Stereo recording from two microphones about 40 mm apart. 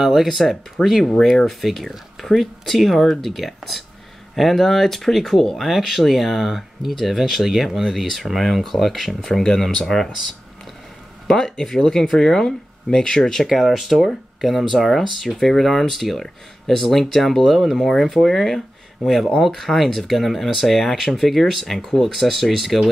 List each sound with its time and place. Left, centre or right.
0.0 s speech: centre
0.8 s speech: centre
1.2 s speech: centre
11.2 s speech: centre
13.5 s speech: centre